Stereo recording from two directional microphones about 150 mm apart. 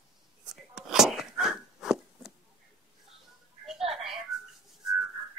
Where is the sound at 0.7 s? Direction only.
5° right (ahead or behind).